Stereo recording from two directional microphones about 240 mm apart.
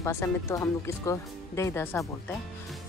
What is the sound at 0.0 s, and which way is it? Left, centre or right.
Speech, centre.